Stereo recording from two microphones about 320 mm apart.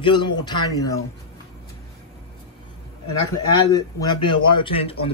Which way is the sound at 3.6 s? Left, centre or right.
Centre.